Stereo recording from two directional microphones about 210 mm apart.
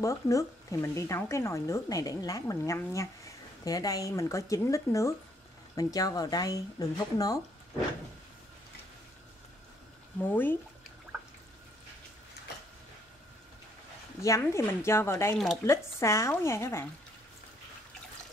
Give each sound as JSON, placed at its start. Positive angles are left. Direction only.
{"t": 0.0, "sound": "speech", "side_deg": 15}
{"t": 10.1, "sound": "speech", "side_deg": 10}
{"t": 14.2, "sound": "speech", "side_deg": 15}
{"t": 15.3, "sound": "speech", "side_deg": 0}
{"t": 15.6, "sound": "speech", "side_deg": 15}